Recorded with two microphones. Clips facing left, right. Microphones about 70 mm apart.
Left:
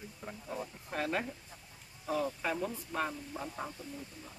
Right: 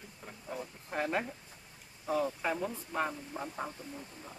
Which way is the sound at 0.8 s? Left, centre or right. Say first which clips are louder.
Right 2 dB; centre.